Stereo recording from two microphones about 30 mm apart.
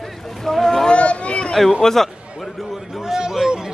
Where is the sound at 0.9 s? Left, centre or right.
Left.